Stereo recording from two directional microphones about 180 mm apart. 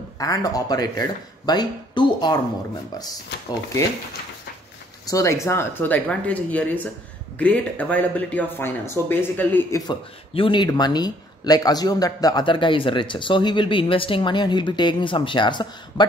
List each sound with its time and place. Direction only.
0.2 s speech: 20° left (ahead or behind)
5.0 s speech: 20° left (ahead or behind)